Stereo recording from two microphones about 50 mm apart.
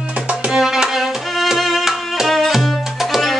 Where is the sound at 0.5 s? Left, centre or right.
Centre.